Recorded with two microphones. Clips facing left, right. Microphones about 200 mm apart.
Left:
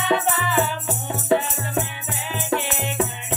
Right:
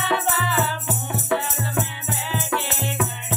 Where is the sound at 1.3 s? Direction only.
20° left (ahead or behind).